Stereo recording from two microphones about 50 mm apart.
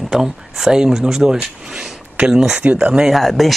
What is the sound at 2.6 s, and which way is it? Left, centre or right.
Speech, right.